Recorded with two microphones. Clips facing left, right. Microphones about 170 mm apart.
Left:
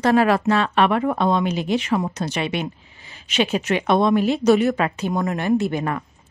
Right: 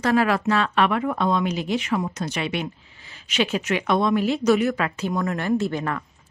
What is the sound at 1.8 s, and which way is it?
A woman's voice, 35° left (ahead or behind).